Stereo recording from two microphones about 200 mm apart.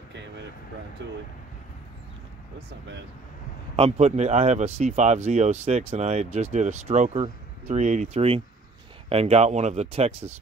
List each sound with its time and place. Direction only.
3.7 s speech: 30° right (ahead or behind)